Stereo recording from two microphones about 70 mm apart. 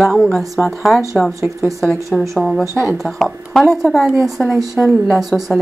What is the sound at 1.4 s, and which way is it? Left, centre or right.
Speech, right.